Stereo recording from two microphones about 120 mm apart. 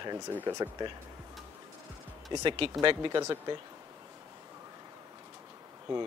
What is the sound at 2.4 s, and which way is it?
A man's voice, 45° right (ahead or behind).